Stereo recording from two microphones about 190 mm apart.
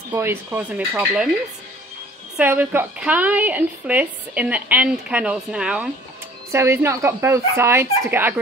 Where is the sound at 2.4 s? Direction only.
10° right (ahead or behind).